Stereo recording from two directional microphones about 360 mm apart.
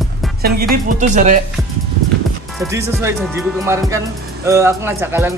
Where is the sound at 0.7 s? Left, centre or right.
Centre.